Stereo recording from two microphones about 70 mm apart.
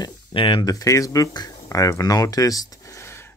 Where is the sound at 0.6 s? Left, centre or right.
Left.